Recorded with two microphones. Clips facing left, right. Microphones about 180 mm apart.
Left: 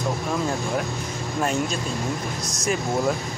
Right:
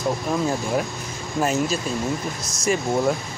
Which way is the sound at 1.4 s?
5° right (ahead or behind).